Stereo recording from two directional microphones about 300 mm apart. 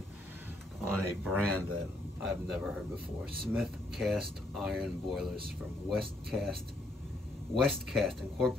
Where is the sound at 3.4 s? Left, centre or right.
Centre.